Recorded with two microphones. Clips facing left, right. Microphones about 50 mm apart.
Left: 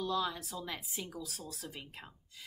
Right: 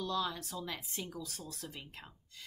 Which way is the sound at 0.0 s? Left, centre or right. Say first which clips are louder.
Left 1 dB; centre.